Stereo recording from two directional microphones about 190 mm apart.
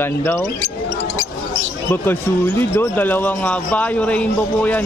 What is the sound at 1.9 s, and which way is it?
Speech, 10° left (ahead or behind).